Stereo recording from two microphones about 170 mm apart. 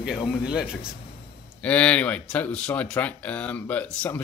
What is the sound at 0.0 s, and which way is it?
Speech, 5° right (ahead or behind).